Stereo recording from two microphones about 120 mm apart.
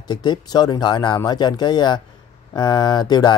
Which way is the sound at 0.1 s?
35° left (ahead or behind).